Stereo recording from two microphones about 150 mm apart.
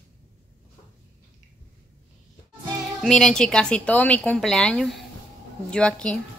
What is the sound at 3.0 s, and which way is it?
A woman's voice, 5° left (ahead or behind).